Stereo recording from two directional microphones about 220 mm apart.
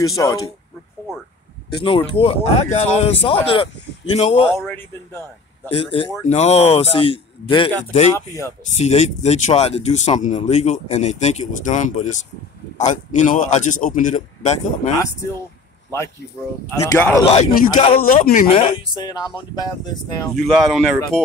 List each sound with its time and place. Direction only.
0.0 s speech: 15° left (ahead or behind)
1.9 s speech: 20° left (ahead or behind)
4.6 s speech: 10° left (ahead or behind)
5.7 s speech: 25° left (ahead or behind)
16.8 s speech: 10° left (ahead or behind)
17.2 s speech: 25° left (ahead or behind)
17.9 s speech: 40° left (ahead or behind)
18.5 s speech: 25° left (ahead or behind)
20.2 s speech: centre (ahead or behind)